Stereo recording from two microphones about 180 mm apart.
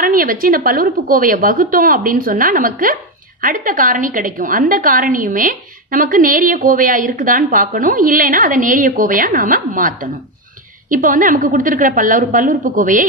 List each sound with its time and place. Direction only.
0.0 s a woman's voice: 50° right (ahead or behind)